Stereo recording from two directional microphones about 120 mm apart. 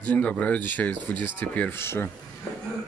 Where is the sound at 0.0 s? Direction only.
10° left (ahead or behind).